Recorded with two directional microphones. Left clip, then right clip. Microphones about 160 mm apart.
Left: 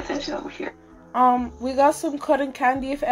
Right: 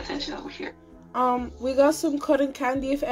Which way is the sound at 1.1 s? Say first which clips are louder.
Left 5 dB; 40° right (ahead or behind).